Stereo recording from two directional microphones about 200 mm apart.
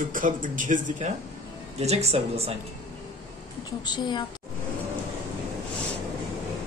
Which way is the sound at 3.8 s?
20° left (ahead or behind).